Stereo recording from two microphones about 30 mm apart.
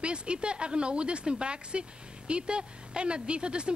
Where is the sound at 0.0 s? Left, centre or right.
Right.